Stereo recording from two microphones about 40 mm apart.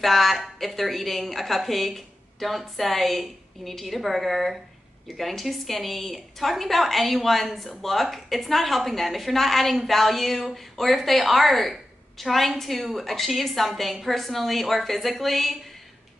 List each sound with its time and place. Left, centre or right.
0.0 s a woman's voice: centre